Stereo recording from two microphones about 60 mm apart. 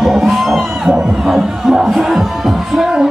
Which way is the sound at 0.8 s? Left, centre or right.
Centre.